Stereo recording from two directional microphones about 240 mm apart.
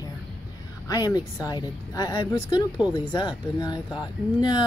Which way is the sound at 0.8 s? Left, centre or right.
Centre.